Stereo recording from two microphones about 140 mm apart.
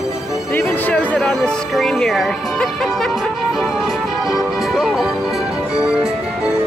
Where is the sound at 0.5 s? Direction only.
15° left (ahead or behind); by 6.1 s 5° right (ahead or behind).